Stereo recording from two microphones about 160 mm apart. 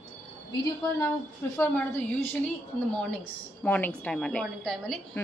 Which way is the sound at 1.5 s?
15° left (ahead or behind).